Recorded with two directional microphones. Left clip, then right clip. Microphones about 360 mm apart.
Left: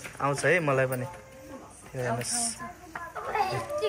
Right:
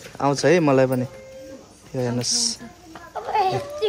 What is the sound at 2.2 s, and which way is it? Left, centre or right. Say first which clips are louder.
Speech: right 10 dB; centre.